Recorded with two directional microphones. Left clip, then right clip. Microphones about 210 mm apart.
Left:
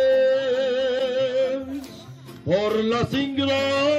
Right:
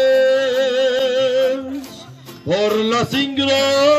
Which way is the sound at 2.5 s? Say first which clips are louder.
Right 4 dB; 50° right (ahead or behind).